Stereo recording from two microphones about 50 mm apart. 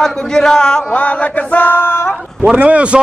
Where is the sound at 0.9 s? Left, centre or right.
Left.